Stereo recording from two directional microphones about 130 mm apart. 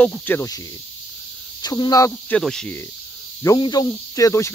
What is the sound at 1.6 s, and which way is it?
Speech, 30° left (ahead or behind).